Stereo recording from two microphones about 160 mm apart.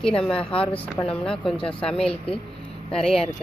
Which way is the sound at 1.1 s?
5° left (ahead or behind).